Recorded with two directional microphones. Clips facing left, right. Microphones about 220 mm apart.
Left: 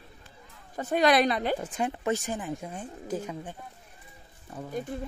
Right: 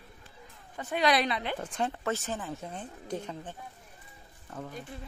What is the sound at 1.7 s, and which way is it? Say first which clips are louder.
Speech: left 3 dB; 15° left (ahead or behind).